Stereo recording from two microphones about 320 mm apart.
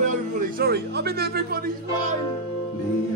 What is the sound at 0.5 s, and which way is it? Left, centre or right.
Speech, right.